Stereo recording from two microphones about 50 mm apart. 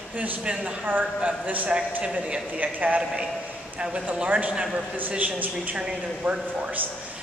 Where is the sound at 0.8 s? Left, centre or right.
Right.